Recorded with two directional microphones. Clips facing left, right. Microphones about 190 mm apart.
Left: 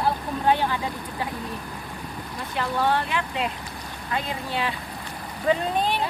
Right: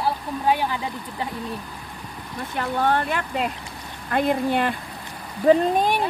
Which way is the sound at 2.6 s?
50° right (ahead or behind).